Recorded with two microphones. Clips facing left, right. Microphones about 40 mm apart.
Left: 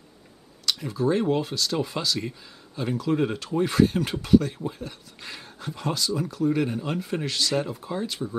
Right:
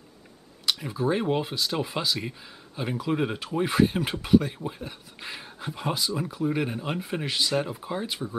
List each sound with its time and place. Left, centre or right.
0.7 s speech: centre